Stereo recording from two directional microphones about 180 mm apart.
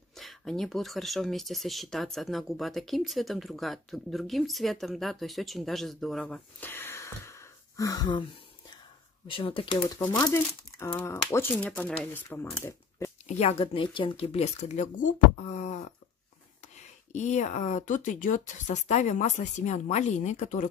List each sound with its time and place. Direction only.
0.1 s speech: centre (ahead or behind)
13.4 s speech: 35° left (ahead or behind)